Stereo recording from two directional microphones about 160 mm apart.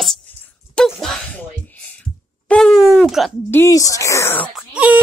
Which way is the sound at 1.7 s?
10° left (ahead or behind).